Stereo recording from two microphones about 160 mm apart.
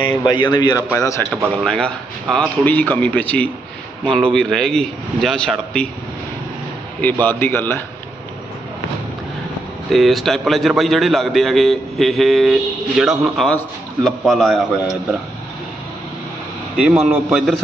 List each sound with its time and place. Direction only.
0.3 s a man's voice: 30° left (ahead or behind)
1.6 s a man's voice: 5° left (ahead or behind)
7.0 s speech: 10° left (ahead or behind)
9.8 s a man's voice: centre (ahead or behind)
16.7 s a man's voice: 5° right (ahead or behind)